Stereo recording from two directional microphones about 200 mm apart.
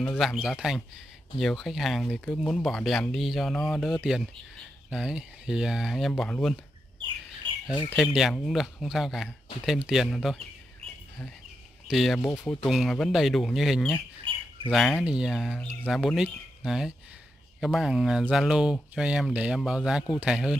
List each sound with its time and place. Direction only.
0.0 s speech: 5° left (ahead or behind)
7.4 s bird: 25° right (ahead or behind)
7.9 s speech: centre (ahead or behind)
11.9 s speech: centre (ahead or behind)
12.2 s speech: 15° left (ahead or behind)
12.6 s speech: centre (ahead or behind)